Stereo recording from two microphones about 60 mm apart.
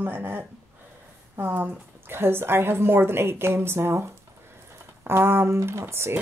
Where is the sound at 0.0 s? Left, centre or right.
Right.